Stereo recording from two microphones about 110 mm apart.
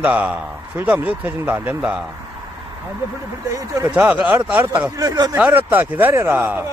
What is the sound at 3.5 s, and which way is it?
Speech, 30° right (ahead or behind).